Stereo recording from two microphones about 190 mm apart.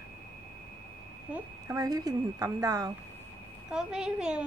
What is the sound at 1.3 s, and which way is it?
Speech, 15° right (ahead or behind).